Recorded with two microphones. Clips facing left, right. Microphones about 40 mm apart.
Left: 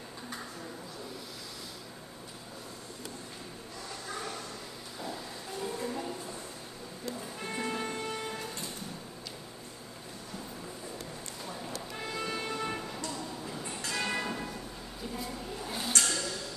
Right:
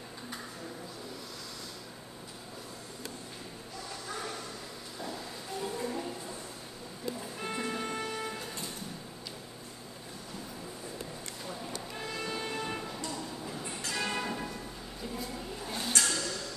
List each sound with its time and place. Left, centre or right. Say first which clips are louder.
5.0 s music: even; centre
7.5 s music: left 1 dB; centre
12.1 s music: left 1 dB; centre
15.1 s a sound: left 1 dB; centre